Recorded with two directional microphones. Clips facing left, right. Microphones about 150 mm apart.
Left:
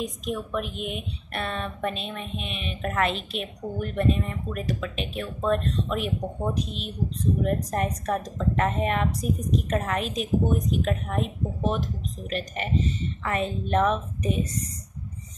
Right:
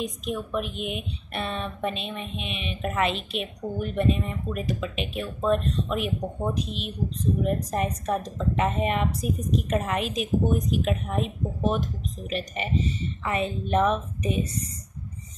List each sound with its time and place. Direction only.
0.0 s a woman's voice: 5° right (ahead or behind)